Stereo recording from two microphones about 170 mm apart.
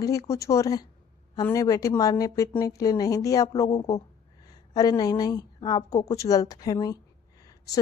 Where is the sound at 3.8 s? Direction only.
35° left (ahead or behind).